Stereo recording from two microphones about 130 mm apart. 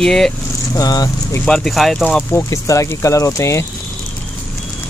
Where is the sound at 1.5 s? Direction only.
5° left (ahead or behind).